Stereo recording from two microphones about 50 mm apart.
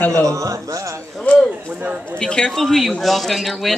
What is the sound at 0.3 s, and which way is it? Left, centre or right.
Speech, right.